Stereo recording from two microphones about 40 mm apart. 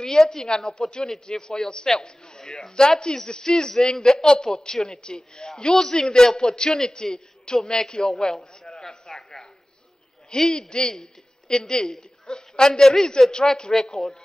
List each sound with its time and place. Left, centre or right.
0.0 s a man's voice: centre
8.7 s a sound: centre
10.3 s a man's voice: centre